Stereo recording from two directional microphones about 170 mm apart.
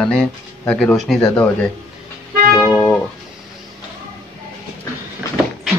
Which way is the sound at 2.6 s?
10° left (ahead or behind).